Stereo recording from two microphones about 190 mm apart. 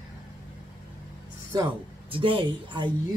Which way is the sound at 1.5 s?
20° right (ahead or behind).